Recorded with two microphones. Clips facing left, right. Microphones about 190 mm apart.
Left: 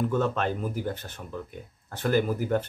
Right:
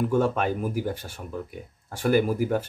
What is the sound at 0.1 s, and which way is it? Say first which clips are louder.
Speech: right 3 dB; 10° right (ahead or behind).